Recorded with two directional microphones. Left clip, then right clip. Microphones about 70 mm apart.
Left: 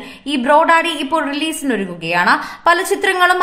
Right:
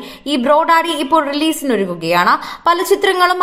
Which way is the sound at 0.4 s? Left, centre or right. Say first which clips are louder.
Even; right.